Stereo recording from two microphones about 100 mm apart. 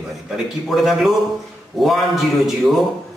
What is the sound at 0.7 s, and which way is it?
Mantra, centre (ahead or behind).